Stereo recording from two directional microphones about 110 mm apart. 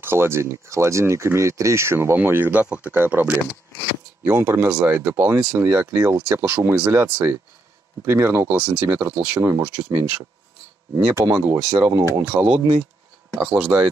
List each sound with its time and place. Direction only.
0.0 s speech: 20° right (ahead or behind)
11.0 s speech: 10° right (ahead or behind)
12.3 s speech: 15° right (ahead or behind)